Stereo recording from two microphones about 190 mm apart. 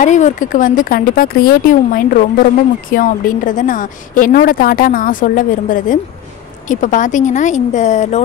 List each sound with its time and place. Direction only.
0.0 s a woman's voice: 40° left (ahead or behind)